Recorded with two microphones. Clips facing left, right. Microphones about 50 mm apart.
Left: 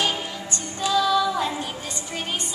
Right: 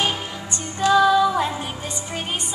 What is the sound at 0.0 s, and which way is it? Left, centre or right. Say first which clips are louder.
Music: right 1 dB; right.